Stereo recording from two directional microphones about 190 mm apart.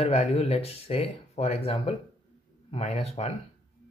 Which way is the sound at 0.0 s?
30° left (ahead or behind).